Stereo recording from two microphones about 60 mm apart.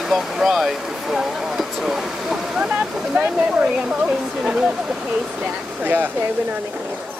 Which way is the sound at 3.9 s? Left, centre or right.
Centre.